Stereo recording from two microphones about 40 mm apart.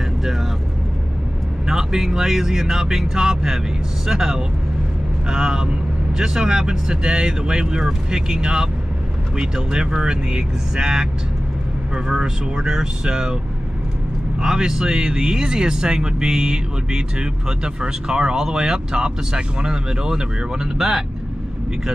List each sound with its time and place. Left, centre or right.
1.7 s speech: centre
14.4 s speech: centre